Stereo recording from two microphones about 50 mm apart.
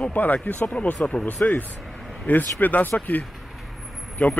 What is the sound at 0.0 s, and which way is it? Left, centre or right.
Speech, left.